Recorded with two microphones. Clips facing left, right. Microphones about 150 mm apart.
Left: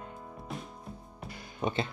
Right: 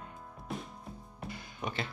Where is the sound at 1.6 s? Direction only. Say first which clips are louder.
Left 6 dB; 25° left (ahead or behind).